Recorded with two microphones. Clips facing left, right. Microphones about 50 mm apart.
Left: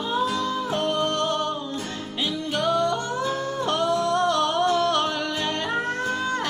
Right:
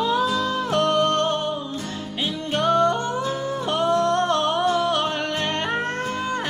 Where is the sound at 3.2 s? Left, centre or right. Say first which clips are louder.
Even; centre.